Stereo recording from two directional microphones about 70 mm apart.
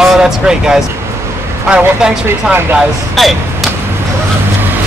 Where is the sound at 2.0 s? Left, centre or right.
Centre.